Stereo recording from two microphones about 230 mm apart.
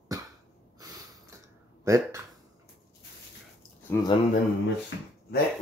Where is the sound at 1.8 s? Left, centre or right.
Centre.